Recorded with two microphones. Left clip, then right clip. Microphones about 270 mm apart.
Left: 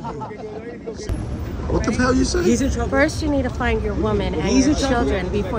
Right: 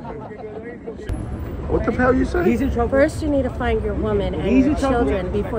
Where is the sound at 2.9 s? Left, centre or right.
Centre.